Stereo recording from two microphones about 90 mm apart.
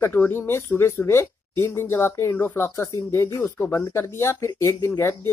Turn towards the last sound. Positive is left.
turn(degrees=35)  # may be behind; listen again after turning